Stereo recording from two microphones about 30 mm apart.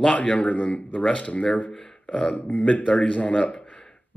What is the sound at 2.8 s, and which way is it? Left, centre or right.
Speech, left.